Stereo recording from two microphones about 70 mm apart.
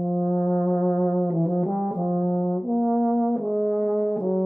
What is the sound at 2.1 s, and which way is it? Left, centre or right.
Brass instrument, centre.